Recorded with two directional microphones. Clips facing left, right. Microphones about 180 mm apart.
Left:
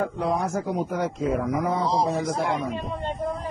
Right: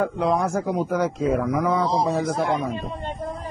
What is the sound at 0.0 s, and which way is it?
Speech, 90° right.